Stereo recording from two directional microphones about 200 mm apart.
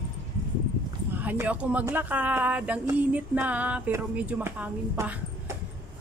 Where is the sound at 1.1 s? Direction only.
10° right (ahead or behind).